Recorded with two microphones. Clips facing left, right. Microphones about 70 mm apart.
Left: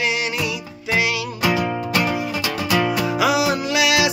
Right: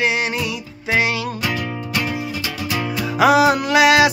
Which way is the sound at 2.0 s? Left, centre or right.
Left.